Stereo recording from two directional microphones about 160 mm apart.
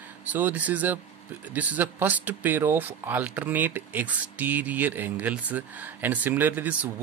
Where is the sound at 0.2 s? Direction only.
10° right (ahead or behind).